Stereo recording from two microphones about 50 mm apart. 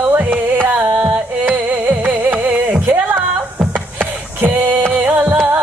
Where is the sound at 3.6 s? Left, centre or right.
Right.